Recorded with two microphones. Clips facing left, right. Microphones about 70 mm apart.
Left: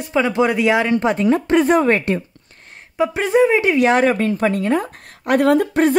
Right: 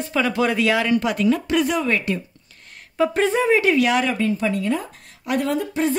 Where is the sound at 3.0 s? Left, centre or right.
Centre.